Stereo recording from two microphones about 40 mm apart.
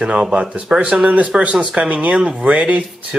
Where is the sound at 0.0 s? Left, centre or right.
Right.